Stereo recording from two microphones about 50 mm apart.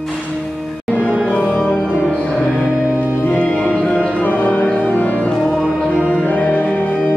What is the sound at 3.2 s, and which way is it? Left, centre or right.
Music, left.